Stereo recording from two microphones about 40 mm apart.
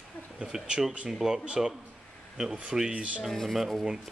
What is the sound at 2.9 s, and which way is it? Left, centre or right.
Speech, right.